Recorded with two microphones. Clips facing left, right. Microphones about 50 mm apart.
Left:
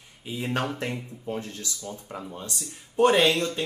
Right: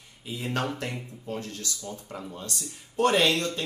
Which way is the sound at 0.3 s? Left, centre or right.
Centre.